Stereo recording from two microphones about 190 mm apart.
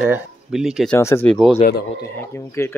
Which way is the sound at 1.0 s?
15° left (ahead or behind).